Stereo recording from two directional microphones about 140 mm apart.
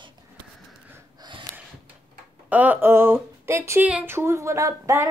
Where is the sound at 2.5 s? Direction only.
10° right (ahead or behind).